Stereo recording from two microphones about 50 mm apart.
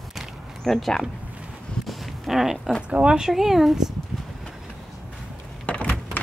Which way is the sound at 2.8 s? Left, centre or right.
Right.